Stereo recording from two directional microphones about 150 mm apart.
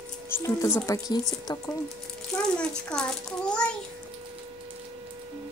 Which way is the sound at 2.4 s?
5° left (ahead or behind).